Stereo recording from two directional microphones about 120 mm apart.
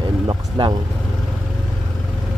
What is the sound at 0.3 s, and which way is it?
Speech, 40° right (ahead or behind).